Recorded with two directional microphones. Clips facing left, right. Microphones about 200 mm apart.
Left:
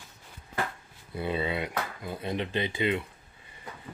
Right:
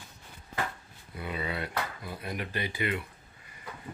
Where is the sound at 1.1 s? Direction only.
30° left (ahead or behind).